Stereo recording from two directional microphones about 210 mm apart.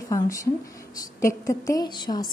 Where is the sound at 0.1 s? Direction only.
15° left (ahead or behind).